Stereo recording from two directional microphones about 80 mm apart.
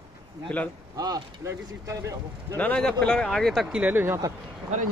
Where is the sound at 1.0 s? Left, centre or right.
Right.